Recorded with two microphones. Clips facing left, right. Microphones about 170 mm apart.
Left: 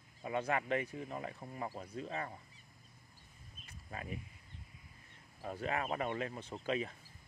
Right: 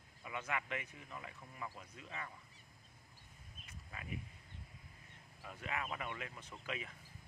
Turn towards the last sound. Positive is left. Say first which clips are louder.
# left 9 dB
turn(degrees=30)  # may be behind; listen again after turning